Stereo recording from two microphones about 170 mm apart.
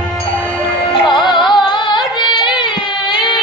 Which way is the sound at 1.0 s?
25° left (ahead or behind).